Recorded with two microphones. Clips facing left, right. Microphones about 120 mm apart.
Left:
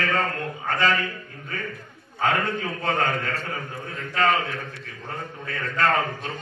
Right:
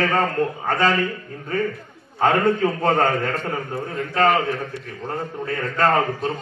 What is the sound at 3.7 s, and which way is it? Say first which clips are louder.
A man's voice: right 7 dB; 35° right (ahead or behind).